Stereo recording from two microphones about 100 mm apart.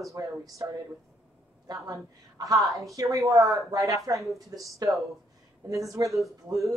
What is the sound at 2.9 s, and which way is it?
Speech, 35° right (ahead or behind).